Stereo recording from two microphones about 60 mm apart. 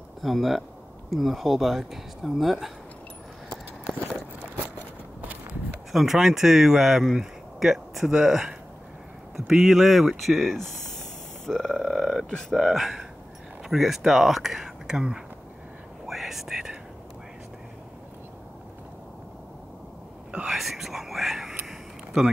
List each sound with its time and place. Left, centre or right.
0.2 s speech: centre
5.9 s speech: centre
9.5 s speech: centre
16.1 s whispering: centre
20.2 s whispering: centre
20.5 s whispering: centre
21.6 s a sound: centre